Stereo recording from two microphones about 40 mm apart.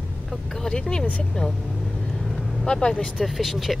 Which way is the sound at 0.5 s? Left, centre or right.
Centre.